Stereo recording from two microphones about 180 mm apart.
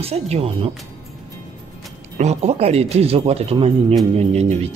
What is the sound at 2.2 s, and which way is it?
Speech, 40° right (ahead or behind).